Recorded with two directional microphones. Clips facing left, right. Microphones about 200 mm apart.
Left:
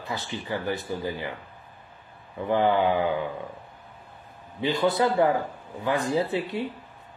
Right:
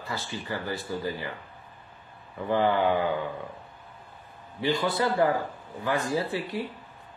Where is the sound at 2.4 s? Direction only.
20° left (ahead or behind).